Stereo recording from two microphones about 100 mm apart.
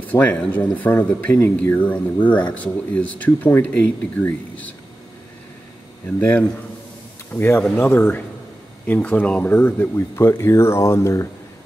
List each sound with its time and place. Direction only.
0.0 s speech: 15° left (ahead or behind)
6.0 s speech: 15° left (ahead or behind)